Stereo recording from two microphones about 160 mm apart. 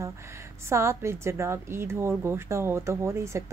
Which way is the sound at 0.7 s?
15° right (ahead or behind).